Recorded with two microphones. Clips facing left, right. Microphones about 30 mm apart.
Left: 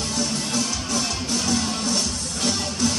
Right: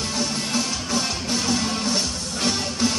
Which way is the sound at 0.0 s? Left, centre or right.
Centre.